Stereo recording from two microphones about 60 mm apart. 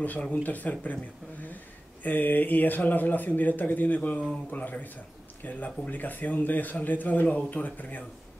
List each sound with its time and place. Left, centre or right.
0.0 s a man's voice: left
2.0 s a man's voice: left